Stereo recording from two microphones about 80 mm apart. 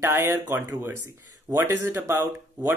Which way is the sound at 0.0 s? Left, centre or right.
Right.